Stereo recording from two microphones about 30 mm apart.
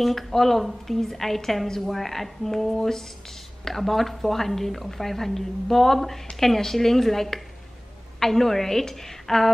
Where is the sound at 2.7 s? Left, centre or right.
Centre.